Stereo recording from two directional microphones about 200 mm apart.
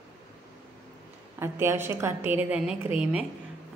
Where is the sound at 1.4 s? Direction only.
10° right (ahead or behind).